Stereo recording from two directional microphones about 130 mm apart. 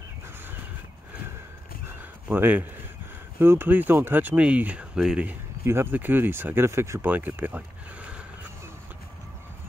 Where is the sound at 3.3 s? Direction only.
15° right (ahead or behind).